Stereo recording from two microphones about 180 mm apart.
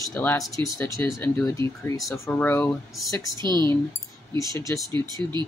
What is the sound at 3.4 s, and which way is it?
Speech, 25° right (ahead or behind).